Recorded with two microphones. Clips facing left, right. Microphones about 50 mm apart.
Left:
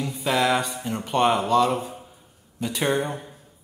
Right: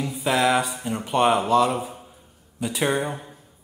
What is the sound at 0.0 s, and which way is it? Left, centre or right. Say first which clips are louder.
Speech: right 1 dB; centre.